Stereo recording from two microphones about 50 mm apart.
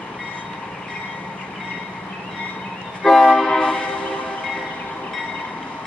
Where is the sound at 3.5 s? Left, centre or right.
Left.